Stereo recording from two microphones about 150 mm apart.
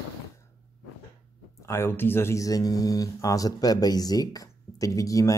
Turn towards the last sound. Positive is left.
turn(degrees=20)  # may be behind; listen again after turning